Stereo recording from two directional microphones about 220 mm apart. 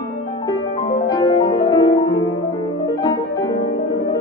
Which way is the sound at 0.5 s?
20° left (ahead or behind).